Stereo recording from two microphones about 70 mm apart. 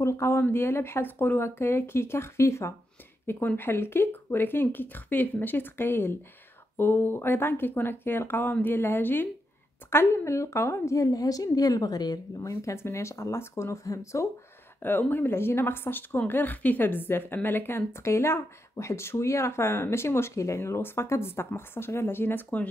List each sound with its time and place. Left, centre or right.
0.0 s a woman's voice: left
3.3 s a woman's voice: left
12.4 s speech: left
14.8 s a woman's voice: left